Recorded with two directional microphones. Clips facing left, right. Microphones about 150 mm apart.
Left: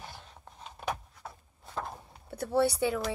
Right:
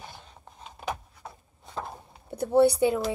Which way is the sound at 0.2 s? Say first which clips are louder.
Right 1 dB; 5° right (ahead or behind).